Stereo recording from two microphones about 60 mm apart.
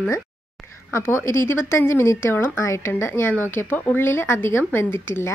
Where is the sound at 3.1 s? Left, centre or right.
Left.